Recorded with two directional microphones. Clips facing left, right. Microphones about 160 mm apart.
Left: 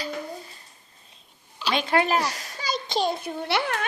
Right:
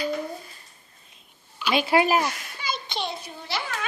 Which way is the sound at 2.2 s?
40° left (ahead or behind).